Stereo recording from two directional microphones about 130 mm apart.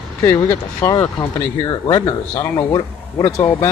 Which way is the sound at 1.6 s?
35° left (ahead or behind).